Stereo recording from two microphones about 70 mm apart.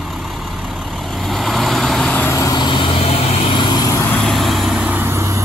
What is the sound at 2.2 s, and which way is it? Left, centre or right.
Vehicle, left.